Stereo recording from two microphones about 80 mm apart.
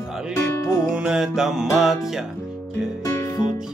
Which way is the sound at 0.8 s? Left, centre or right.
Centre.